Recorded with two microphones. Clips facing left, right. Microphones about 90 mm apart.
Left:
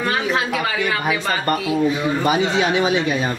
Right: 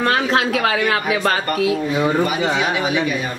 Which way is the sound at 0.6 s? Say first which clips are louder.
Right 3 dB; 60° right (ahead or behind).